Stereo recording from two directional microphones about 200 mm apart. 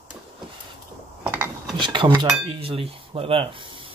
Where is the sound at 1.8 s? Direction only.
25° right (ahead or behind).